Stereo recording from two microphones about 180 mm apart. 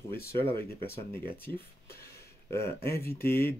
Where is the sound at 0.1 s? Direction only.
15° left (ahead or behind).